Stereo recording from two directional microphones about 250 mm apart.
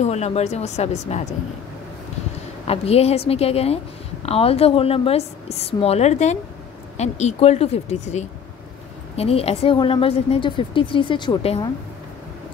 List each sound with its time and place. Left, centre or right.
0.0 s a woman's voice: left
2.6 s a woman's voice: left